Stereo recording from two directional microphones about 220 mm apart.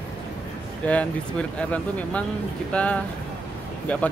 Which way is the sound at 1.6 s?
5° left (ahead or behind).